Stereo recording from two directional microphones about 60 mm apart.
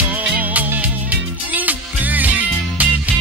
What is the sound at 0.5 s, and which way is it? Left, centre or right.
Music, right.